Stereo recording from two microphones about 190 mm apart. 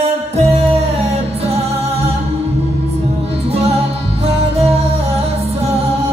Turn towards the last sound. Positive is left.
turn(degrees=-30)  # may be behind; listen again after turning